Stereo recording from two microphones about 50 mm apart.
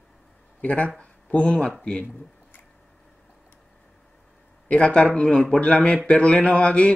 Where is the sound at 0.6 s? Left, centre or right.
Left.